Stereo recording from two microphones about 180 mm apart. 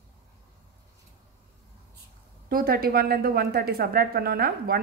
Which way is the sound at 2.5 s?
55° right (ahead or behind).